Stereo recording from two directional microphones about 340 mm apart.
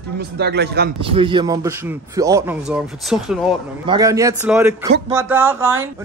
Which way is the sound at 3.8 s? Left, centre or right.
Centre.